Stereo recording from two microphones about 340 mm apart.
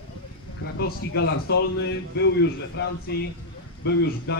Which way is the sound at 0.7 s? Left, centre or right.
Left.